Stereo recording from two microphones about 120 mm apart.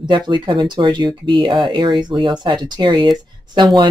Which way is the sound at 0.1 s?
40° right (ahead or behind).